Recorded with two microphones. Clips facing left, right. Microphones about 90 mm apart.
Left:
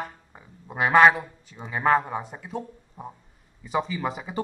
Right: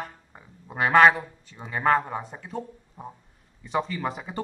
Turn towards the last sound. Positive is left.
turn(degrees=5)  # may be behind; listen again after turning